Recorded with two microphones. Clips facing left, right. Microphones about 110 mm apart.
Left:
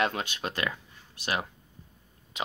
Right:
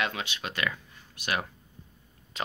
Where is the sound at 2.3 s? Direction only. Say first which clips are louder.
Even; 15° left (ahead or behind).